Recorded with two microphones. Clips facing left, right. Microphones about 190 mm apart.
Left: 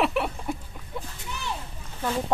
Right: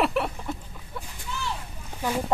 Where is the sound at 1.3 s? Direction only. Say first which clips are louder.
Right 3 dB; 20° left (ahead or behind).